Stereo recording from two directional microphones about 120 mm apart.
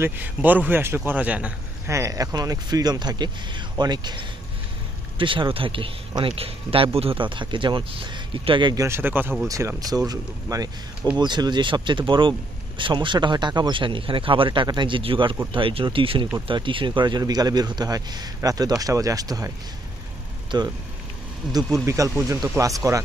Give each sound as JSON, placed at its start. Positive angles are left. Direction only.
{"t": 0.0, "sound": "speech", "side_deg": -15}
{"t": 1.9, "sound": "speech", "side_deg": -25}
{"t": 8.7, "sound": "speech", "side_deg": -20}
{"t": 20.5, "sound": "speech", "side_deg": -40}
{"t": 21.8, "sound": "speech", "side_deg": -25}